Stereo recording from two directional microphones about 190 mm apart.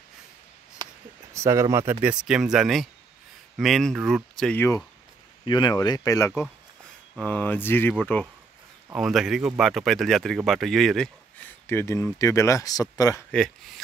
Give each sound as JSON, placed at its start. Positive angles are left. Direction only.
{"t": 0.8, "sound": "a sound", "side_deg": -20}
{"t": 1.3, "sound": "speech", "side_deg": -15}
{"t": 5.4, "sound": "speech", "side_deg": 25}